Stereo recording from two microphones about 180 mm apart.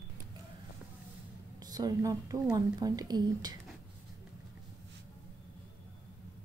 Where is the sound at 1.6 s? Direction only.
20° right (ahead or behind).